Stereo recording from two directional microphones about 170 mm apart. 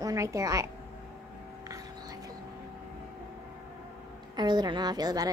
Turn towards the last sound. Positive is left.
turn(degrees=-25)  # may be behind; listen again after turning